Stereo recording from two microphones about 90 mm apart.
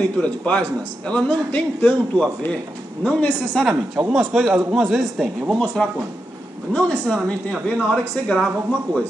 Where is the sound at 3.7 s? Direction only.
15° right (ahead or behind).